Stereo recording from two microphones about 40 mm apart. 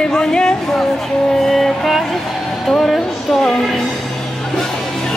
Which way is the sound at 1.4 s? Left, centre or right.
Centre.